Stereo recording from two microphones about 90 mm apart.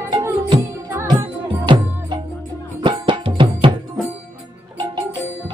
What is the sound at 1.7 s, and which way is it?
Music, 65° right (ahead or behind).